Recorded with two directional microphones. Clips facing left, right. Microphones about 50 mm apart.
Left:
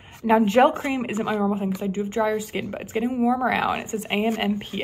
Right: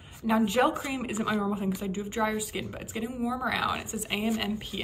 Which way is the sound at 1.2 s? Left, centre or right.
Left.